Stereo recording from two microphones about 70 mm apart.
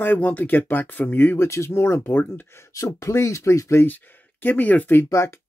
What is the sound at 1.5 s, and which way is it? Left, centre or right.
Speech, left.